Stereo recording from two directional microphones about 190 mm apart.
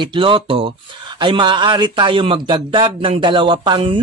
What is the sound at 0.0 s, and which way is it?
Speech, 25° right (ahead or behind).